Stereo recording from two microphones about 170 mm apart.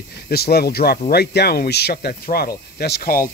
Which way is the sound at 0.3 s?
70° left (ahead or behind).